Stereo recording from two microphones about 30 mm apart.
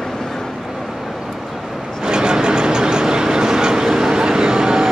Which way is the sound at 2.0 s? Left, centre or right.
Right.